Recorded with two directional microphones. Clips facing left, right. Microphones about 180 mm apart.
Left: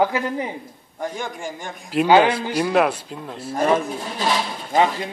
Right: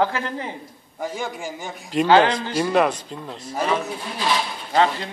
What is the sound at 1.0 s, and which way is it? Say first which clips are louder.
A man's voice: even; 5° right (ahead or behind).